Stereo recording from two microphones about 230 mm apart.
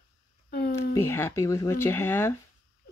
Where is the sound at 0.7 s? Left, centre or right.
Centre.